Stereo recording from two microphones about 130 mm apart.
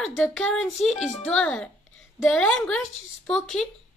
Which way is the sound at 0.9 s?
60° left (ahead or behind).